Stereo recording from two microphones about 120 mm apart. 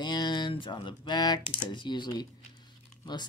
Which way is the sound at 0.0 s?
35° left (ahead or behind).